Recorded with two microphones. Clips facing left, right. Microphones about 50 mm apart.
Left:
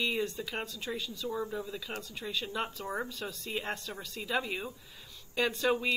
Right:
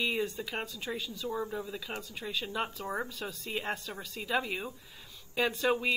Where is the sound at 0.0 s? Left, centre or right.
Centre.